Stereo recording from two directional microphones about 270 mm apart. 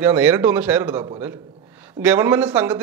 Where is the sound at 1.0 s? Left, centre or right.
Centre.